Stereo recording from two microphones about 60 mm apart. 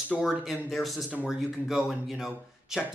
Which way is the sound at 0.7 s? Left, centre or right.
Centre.